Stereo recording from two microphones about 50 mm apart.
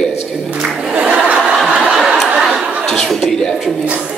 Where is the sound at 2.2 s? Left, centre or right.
Centre.